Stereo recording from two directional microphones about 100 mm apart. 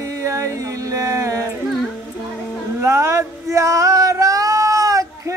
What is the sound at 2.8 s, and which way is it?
Male singing, 30° right (ahead or behind).